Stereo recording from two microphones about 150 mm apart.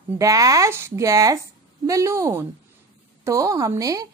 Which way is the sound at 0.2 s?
25° right (ahead or behind).